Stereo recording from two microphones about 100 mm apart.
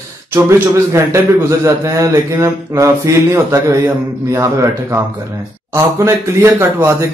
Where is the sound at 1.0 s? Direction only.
30° right (ahead or behind).